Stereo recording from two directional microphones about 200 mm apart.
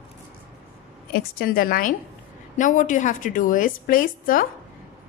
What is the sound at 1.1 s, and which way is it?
A woman's voice, 50° left (ahead or behind).